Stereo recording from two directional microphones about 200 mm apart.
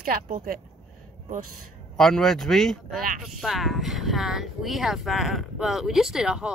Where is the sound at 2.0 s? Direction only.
Centre (ahead or behind).